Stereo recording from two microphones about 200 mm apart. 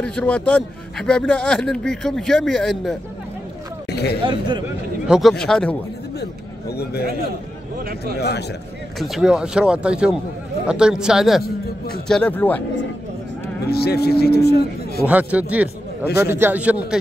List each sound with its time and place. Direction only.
0.0 s speech: 5° left (ahead or behind)
3.9 s a sound: 55° left (ahead or behind)
4.2 s speech: 20° right (ahead or behind)
5.0 s speech: 5° right (ahead or behind)
6.7 s speech: 55° left (ahead or behind)
8.2 s speech: 55° left (ahead or behind)
9.0 s speech: centre (ahead or behind)
13.7 s speech: 50° left (ahead or behind)
15.0 s a man's voice: 10° right (ahead or behind)